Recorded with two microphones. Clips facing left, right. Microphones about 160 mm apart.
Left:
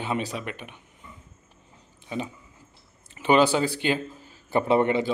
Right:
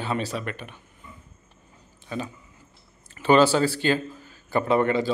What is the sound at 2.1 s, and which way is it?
A man's voice, 20° left (ahead or behind).